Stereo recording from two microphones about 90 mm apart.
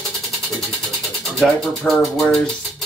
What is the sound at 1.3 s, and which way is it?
Speech, centre (ahead or behind).